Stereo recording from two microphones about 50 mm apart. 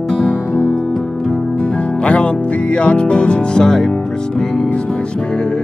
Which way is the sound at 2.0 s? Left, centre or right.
Left.